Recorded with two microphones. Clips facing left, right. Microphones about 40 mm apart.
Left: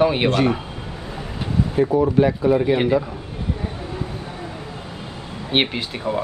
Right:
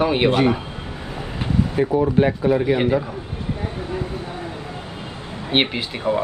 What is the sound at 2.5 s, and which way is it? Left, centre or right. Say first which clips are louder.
Speech: left 1 dB; centre.